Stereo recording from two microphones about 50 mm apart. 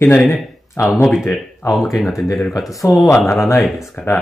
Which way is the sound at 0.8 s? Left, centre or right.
Left.